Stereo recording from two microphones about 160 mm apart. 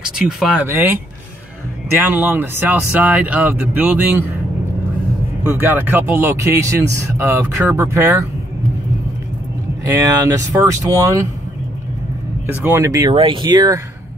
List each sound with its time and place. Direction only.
0.0 s a man's voice: 5° right (ahead or behind)
2.0 s a man's voice: 10° right (ahead or behind)
5.4 s a man's voice: 15° right (ahead or behind)
9.9 s speech: 20° right (ahead or behind)
12.4 s speech: 15° right (ahead or behind)
13.1 s speech: 30° right (ahead or behind)